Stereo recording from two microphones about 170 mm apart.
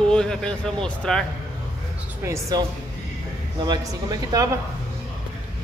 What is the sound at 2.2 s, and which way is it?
Speech, 15° right (ahead or behind).